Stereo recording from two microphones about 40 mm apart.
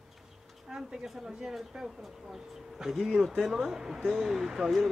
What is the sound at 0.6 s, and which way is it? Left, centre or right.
Speech, centre.